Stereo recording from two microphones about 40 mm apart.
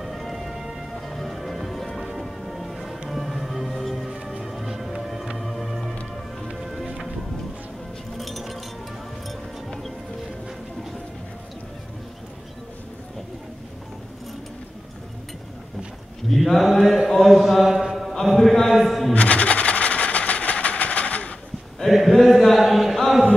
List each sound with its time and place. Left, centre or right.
0.0 s music: centre
8.2 s chink: centre
16.3 s mantra: centre
18.2 s a sound: centre
18.8 s shuffling cards: centre
19.1 s train: left
21.8 s a sound: centre